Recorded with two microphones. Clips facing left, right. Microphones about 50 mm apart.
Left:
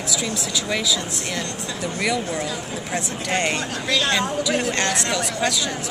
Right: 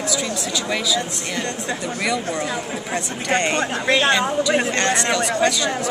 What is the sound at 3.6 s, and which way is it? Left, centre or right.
Speech, right.